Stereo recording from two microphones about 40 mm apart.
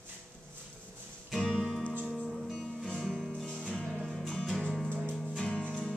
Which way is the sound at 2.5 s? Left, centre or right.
Centre.